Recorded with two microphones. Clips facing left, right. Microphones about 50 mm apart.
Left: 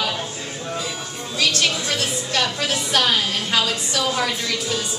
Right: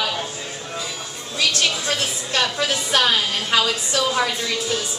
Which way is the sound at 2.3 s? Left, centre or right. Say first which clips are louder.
Right 2 dB; centre.